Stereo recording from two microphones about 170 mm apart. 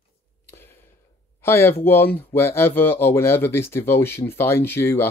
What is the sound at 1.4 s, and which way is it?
Speech, 15° left (ahead or behind).